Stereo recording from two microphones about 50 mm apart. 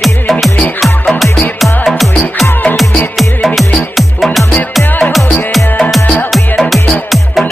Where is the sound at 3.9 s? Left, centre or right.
Centre.